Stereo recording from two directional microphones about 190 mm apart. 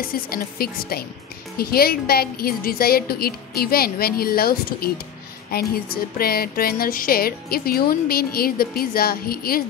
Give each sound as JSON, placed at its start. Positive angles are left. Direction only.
{"t": 0.0, "sound": "speech", "side_deg": 50}